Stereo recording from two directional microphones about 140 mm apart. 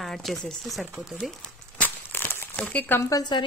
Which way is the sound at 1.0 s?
5° left (ahead or behind).